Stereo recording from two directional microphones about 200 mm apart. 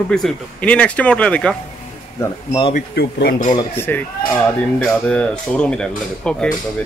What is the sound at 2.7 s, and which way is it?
Speech, 50° left (ahead or behind).